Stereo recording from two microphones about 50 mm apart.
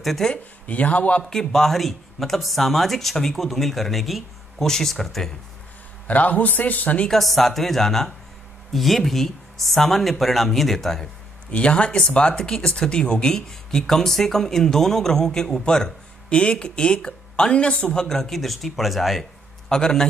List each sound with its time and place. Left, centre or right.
0.0 s speech: centre
0.3 s speech: left
1.3 s speech: centre
6.0 s a man's voice: left
7.1 s speech: centre
11.5 s speech: left; by 19.2 s centre
19.7 s speech: centre